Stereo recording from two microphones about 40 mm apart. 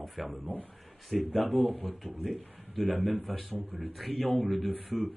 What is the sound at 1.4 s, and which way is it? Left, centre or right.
Speech, left.